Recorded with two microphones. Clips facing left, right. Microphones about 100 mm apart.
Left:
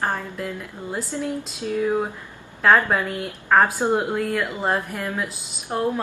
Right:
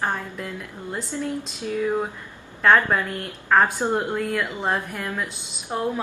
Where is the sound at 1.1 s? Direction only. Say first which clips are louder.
Left 1 dB; 10° left (ahead or behind).